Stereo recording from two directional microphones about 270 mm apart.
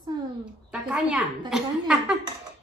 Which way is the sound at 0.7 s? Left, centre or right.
Centre.